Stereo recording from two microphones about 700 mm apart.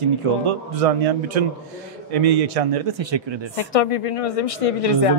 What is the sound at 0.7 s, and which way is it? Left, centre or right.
Speech, right.